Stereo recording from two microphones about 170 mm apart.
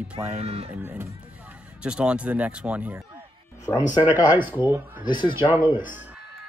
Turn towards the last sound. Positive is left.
turn(degrees=-10)  # may be behind; listen again after turning